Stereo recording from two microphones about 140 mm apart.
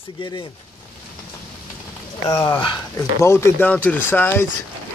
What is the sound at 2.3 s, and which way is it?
Speech, 15° left (ahead or behind).